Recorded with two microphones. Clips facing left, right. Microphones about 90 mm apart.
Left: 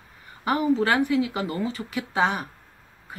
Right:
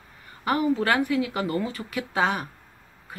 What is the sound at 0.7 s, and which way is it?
A woman's voice, 25° left (ahead or behind).